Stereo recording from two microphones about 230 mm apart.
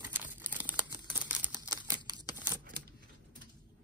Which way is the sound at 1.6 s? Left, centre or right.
Centre.